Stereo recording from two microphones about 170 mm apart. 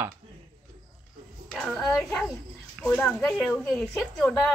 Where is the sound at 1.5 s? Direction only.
5° left (ahead or behind).